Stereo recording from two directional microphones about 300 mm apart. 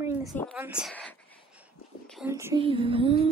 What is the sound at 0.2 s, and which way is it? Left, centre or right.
A woman's voice, centre.